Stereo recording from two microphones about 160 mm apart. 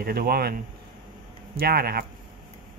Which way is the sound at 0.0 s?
70° right (ahead or behind).